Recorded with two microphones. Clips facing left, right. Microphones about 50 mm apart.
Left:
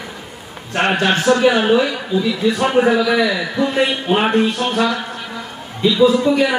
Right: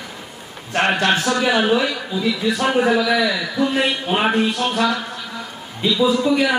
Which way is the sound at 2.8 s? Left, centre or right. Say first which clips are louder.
Left 2 dB; centre.